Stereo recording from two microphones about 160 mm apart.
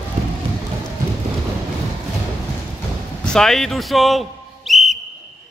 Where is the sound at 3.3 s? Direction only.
5° left (ahead or behind).